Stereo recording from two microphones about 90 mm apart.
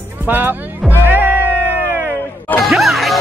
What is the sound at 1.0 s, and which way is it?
Music, 20° right (ahead or behind).